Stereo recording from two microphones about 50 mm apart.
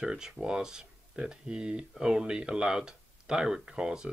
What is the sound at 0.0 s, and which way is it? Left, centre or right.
Speech, centre.